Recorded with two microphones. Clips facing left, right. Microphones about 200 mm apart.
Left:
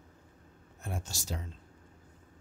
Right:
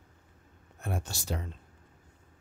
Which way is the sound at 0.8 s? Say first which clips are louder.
Right 4 dB; 60° right (ahead or behind).